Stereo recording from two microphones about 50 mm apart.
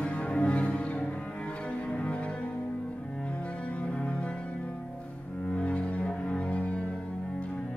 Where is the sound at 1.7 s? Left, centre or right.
Left.